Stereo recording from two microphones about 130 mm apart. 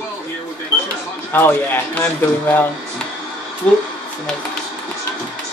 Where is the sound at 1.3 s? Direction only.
15° left (ahead or behind).